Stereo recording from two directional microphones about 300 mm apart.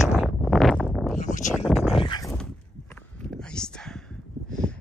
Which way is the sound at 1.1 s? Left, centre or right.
Left.